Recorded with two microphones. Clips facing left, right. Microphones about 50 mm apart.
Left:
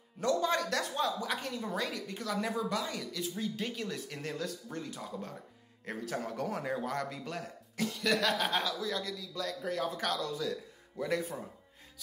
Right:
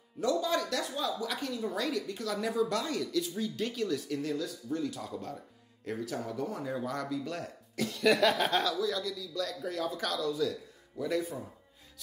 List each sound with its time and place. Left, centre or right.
0.2 s a woman's voice: left
2.7 s a woman's voice: centre; by 4.8 s left
4.8 s speech: left
5.9 s a woman's voice: left
6.3 s speech: left
6.6 s a woman's voice: left
7.3 s speech: left
8.0 s chuckle: centre
8.8 s a woman's voice: left